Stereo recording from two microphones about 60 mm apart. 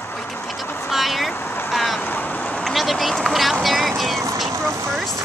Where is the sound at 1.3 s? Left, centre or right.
Left.